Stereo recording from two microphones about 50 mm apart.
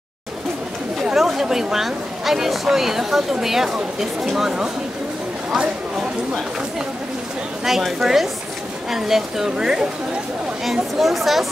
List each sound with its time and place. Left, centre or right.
1.1 s speech: centre
7.6 s speech: centre
10.6 s speech: centre